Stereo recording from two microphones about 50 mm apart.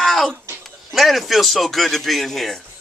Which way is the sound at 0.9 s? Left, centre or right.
Centre.